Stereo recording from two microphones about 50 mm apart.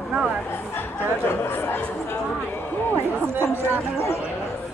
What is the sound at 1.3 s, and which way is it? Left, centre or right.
Speech, left.